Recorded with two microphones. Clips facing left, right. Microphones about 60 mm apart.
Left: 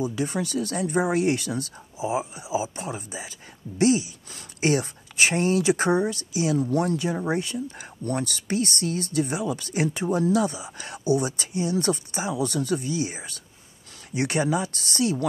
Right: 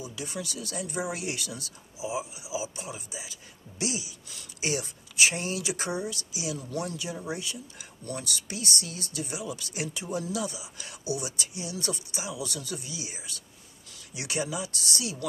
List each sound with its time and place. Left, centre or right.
0.0 s speech: left